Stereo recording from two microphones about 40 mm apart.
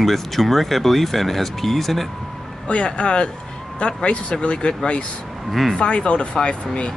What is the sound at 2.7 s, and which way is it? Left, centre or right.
Speech, left.